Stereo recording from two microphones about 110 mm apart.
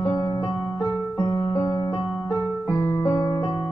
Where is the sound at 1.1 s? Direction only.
35° left (ahead or behind).